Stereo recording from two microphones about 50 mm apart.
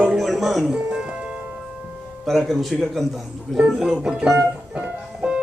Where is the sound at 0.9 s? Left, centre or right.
Right.